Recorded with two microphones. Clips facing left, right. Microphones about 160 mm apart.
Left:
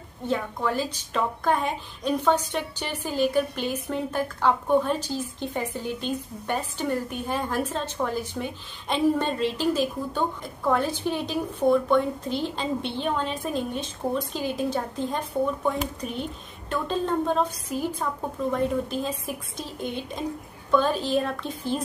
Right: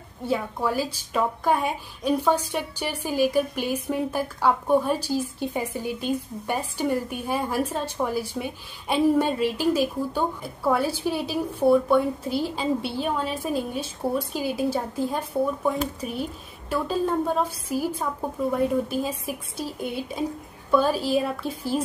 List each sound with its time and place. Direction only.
0.3 s a woman's voice: 10° right (ahead or behind)